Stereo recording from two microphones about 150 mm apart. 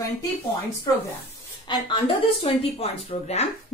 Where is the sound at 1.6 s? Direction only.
35° left (ahead or behind).